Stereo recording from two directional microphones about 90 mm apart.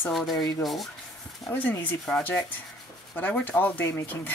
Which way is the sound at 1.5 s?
20° left (ahead or behind).